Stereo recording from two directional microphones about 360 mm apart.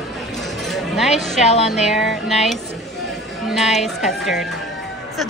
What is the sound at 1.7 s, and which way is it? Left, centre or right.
Speech, centre.